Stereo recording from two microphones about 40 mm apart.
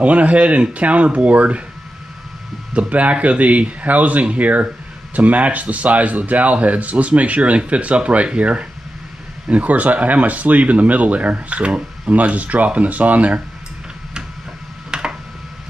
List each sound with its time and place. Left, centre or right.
0.0 s speech: right
2.7 s speech: right
9.5 s speech: right
14.9 s a sound: right